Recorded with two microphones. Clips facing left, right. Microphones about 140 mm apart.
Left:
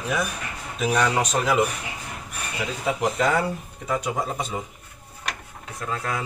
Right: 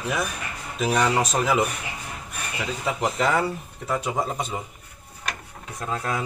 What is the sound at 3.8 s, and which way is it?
Speech, centre (ahead or behind).